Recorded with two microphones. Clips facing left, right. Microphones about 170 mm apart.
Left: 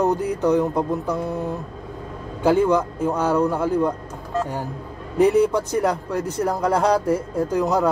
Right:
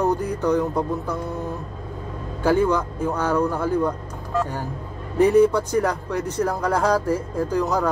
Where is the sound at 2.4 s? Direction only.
10° left (ahead or behind).